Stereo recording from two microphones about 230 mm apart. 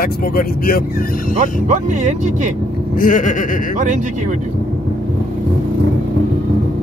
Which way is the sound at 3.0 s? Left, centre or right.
Left.